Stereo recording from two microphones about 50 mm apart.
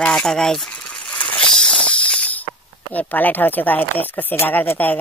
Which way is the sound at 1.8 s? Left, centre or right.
Left.